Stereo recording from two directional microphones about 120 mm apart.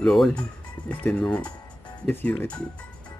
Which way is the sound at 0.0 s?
5° left (ahead or behind).